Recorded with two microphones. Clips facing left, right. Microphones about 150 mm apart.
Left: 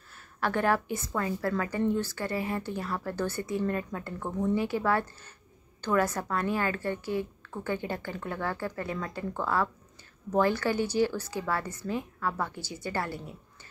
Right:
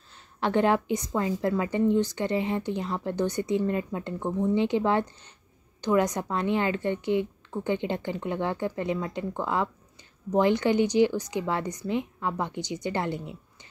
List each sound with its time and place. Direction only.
0.1 s a woman's voice: 20° right (ahead or behind)